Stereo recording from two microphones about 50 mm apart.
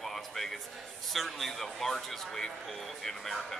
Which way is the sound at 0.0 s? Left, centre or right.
Centre.